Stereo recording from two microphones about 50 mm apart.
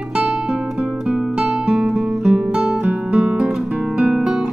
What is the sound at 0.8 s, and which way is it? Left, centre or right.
Guitar, centre.